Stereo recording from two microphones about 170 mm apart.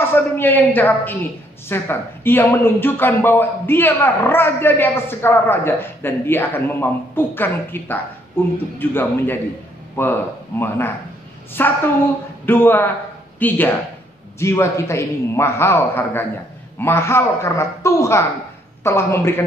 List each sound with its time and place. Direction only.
0.0 s speech: 10° left (ahead or behind)
11.5 s speech: 10° left (ahead or behind)